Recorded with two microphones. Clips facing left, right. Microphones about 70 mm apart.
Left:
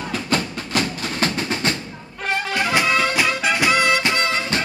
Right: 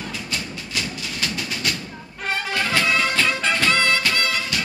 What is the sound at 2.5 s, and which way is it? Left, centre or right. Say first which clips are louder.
Music: left 2 dB; centre.